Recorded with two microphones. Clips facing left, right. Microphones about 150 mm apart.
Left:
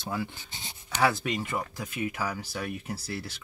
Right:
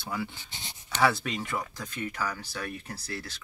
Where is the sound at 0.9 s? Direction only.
10° left (ahead or behind).